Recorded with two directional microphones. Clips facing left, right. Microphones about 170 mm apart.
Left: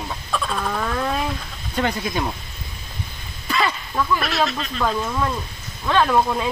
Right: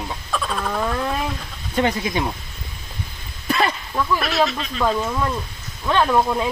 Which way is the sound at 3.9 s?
Centre (ahead or behind).